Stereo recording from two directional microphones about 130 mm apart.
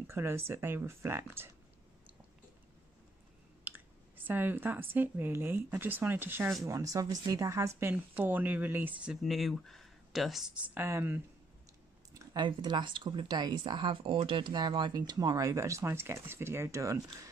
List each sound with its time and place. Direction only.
0.0 s speech: 20° right (ahead or behind)
3.7 s clicking: 15° right (ahead or behind)
4.3 s speech: 15° right (ahead or behind)
12.1 s a sound: 25° right (ahead or behind)
12.4 s speech: 40° right (ahead or behind)